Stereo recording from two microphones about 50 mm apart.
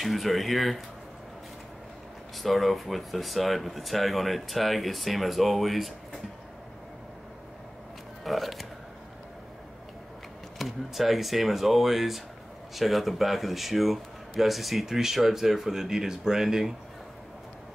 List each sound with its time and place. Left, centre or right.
0.0 s speech: centre
2.3 s speech: centre
8.2 s speech: centre
10.6 s speech: centre